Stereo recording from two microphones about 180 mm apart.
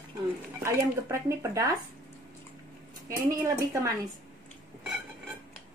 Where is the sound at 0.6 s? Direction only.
15° right (ahead or behind).